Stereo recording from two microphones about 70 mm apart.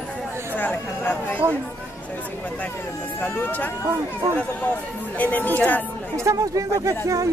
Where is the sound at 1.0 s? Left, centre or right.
Left.